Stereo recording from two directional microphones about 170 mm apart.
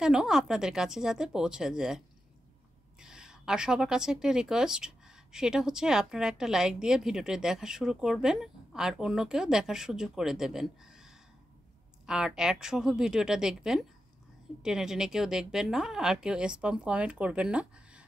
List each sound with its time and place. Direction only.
0.0 s a woman's voice: 5° right (ahead or behind)